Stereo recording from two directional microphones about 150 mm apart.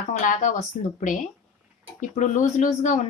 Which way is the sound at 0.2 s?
60° left (ahead or behind).